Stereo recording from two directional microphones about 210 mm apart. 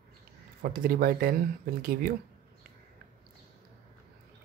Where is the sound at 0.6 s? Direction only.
45° right (ahead or behind).